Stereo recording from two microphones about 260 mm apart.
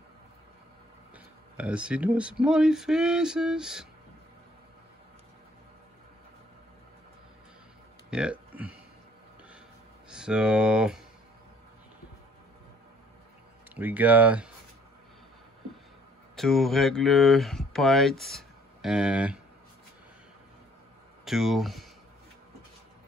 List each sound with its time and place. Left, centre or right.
1.1 s speech: centre
8.1 s speech: centre
10.0 s speech: centre
13.7 s speech: centre
16.3 s speech: centre
21.3 s speech: centre